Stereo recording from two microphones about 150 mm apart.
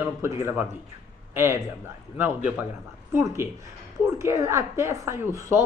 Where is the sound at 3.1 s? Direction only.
15° right (ahead or behind).